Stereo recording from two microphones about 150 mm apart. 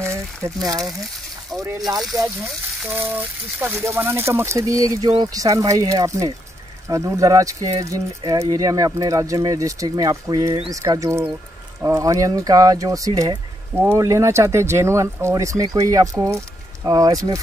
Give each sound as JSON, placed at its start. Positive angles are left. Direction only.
{"t": 2.2, "sound": "speech", "side_deg": -25}
{"t": 3.0, "sound": "speech", "side_deg": -10}